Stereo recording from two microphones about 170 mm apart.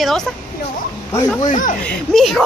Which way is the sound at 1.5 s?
50° left (ahead or behind).